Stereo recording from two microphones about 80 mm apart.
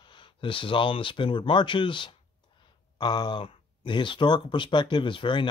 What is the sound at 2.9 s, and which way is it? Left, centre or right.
Speech, left.